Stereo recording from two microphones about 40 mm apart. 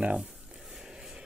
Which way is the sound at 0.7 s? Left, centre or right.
Centre.